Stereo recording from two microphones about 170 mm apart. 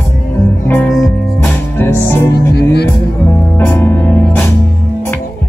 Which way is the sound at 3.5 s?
15° left (ahead or behind).